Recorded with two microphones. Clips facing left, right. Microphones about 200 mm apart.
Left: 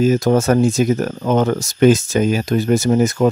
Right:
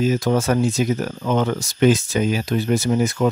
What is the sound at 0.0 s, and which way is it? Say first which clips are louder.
Speech: left 5 dB; 45° left (ahead or behind).